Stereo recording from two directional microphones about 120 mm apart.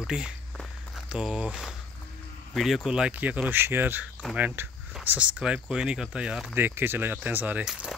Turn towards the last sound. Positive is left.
turn(degrees=-10)  # may be behind; listen again after turning